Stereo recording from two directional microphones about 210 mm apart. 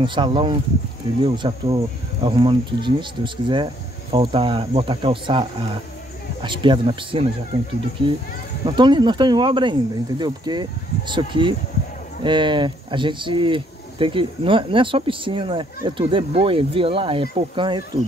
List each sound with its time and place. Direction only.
0.0 s speech: 25° right (ahead or behind)
8.6 s speech: 20° right (ahead or behind)